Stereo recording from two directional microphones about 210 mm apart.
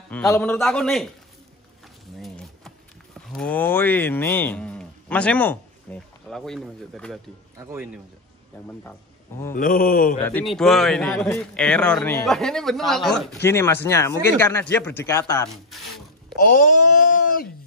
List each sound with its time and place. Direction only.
0.1 s a man's voice: 10° left (ahead or behind)
2.1 s a sound: centre (ahead or behind)
3.3 s speech: 5° left (ahead or behind)
7.5 s speech: 10° right (ahead or behind)
9.5 s mantra: 40° left (ahead or behind)
10.2 s a man's voice: 5° left (ahead or behind)
13.4 s speech: 10° left (ahead or behind)
15.7 s a sound: centre (ahead or behind)
16.3 s speech: 40° left (ahead or behind)